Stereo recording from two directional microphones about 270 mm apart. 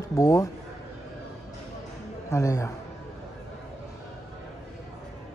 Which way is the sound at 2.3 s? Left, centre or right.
Centre.